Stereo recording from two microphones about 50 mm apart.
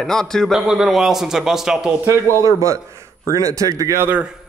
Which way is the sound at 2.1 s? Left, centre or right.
Right.